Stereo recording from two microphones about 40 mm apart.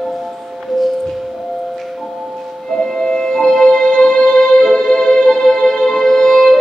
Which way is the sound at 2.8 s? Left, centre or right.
Centre.